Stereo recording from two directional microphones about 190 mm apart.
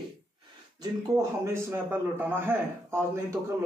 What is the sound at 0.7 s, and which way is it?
A man's voice, 15° right (ahead or behind).